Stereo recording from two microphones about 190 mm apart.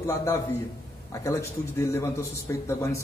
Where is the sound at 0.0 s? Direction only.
15° left (ahead or behind).